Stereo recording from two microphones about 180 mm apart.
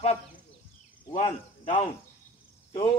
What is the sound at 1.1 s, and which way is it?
Speech, 40° left (ahead or behind).